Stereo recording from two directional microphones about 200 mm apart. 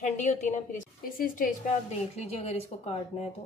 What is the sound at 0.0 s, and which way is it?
A woman's voice, 35° left (ahead or behind).